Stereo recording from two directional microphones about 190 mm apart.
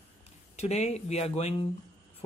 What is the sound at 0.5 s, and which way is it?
Speech, 35° left (ahead or behind).